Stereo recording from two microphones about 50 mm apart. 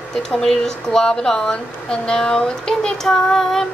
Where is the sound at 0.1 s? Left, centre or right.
Centre.